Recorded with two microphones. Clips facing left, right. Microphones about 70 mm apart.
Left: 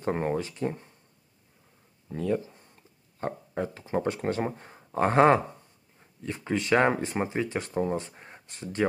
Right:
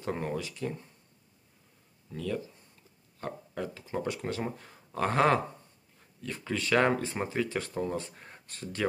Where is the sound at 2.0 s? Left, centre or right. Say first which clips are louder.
Left 6 dB; left.